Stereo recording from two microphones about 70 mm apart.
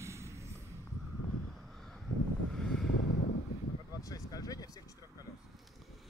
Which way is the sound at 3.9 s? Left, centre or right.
Left.